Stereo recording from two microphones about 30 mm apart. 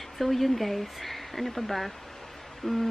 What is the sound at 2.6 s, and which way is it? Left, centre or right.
Speech, centre.